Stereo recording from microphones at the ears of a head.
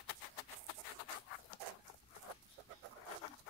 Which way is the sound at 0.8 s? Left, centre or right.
Left.